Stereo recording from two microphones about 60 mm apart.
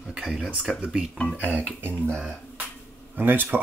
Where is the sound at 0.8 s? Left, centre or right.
Centre.